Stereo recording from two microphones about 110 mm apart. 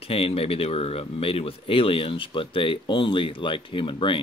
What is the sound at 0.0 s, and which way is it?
Speech, 60° left (ahead or behind).